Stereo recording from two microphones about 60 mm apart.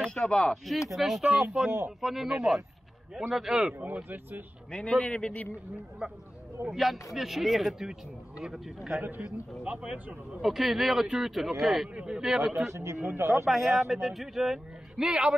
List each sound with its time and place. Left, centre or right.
0.0 s a man's voice: centre
0.9 s a man's voice: centre
3.8 s speech: right
4.6 s a man's voice: centre
6.0 s a man's voice: centre
9.7 s speech: right
10.4 s a man's voice: centre
11.9 s speech: centre
12.2 s a man's voice: centre
12.7 s a man's voice: right
13.5 s a man's voice: centre